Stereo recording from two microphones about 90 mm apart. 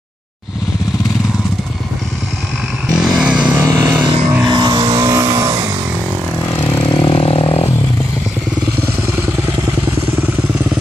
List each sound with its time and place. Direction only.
3.0 s vehicle: 5° right (ahead or behind)
4.5 s vehicle: 45° right (ahead or behind)
4.9 s vehicle: 35° right (ahead or behind)
7.0 s vehicle: 85° left